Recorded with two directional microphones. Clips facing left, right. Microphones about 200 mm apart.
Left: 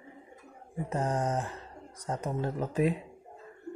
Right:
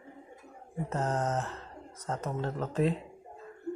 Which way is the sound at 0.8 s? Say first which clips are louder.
Left 1 dB; 10° left (ahead or behind).